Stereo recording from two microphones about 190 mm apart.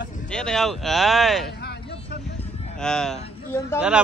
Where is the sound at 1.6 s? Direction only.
60° left (ahead or behind).